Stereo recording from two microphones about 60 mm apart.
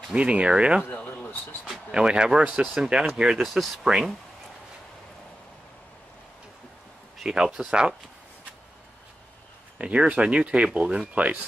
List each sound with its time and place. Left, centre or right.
0.1 s speech: right
0.8 s a sound: left
1.9 s speech: centre
2.7 s speech: centre
3.4 s speech: centre
7.2 s speech: centre
9.8 s speech: centre